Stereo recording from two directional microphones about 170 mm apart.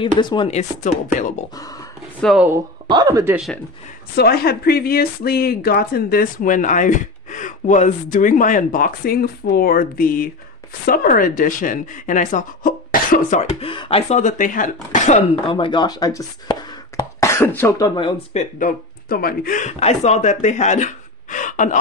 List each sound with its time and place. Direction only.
0.0 s speech: 30° left (ahead or behind)
0.5 s speech: 45° left (ahead or behind)
1.5 s speech: 20° left (ahead or behind)
2.3 s speech: 10° right (ahead or behind)
2.9 s speech: 20° right (ahead or behind)
4.1 s speech: 70° left (ahead or behind)
13.4 s speech: 35° left (ahead or behind)
15.5 s speech: 25° left (ahead or behind); by 21.7 s 50° left (ahead or behind)